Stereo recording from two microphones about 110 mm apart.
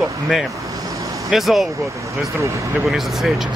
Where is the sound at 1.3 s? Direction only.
Centre (ahead or behind).